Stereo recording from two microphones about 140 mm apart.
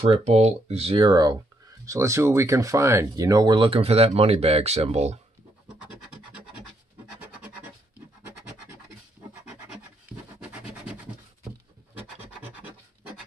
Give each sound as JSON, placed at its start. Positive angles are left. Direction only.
{"t": 0.0, "sound": "speech", "side_deg": -45}
{"t": 1.9, "sound": "speech", "side_deg": -20}
{"t": 10.5, "sound": "a sound", "side_deg": -10}
{"t": 12.2, "sound": "scratch", "side_deg": -15}